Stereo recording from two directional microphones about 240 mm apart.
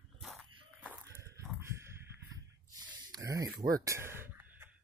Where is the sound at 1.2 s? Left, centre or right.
Centre.